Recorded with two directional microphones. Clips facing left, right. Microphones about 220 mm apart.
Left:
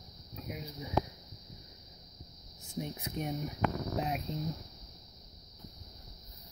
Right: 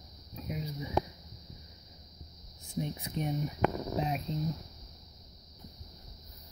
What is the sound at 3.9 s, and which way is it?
Speech, 5° left (ahead or behind).